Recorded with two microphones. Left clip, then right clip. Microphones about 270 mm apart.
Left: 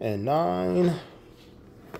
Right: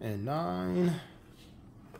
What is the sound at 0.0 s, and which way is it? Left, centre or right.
Speech, centre.